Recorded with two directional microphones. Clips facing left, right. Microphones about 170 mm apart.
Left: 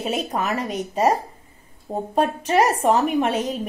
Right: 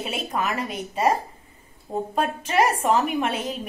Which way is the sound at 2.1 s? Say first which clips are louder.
Left 4 dB; 35° left (ahead or behind).